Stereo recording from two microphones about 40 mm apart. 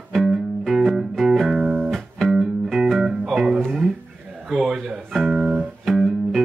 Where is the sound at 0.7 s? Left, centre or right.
Centre.